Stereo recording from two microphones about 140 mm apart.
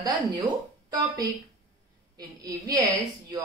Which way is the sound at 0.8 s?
30° right (ahead or behind).